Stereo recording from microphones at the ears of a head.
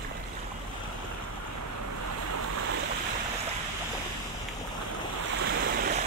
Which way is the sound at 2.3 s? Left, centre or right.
Right.